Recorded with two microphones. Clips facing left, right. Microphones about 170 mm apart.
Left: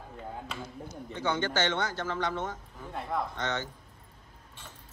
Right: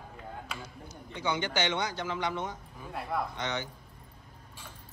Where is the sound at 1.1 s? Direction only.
15° right (ahead or behind).